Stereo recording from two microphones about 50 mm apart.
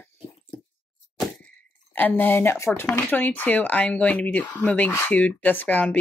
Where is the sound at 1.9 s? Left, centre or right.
Left.